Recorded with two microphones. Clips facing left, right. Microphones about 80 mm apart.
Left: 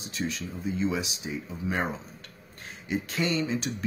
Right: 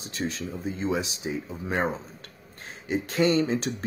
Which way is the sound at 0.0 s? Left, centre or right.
Right.